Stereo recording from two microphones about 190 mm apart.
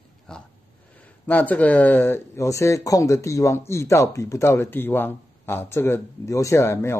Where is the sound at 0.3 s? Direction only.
5° left (ahead or behind).